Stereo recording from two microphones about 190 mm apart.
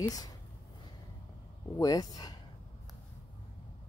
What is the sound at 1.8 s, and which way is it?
Speech, 20° left (ahead or behind).